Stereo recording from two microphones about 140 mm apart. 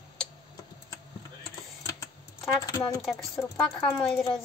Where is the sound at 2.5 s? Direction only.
20° left (ahead or behind).